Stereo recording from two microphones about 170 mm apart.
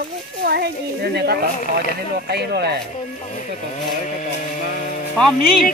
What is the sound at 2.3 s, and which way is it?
Speech, 75° right (ahead or behind).